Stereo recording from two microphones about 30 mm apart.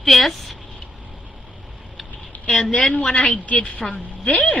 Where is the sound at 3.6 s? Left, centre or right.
Left.